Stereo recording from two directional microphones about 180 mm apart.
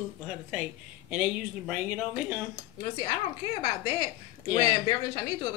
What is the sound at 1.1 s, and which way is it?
A woman's voice, 5° right (ahead or behind).